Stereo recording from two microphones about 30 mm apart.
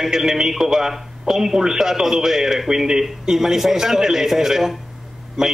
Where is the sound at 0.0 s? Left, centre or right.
Centre.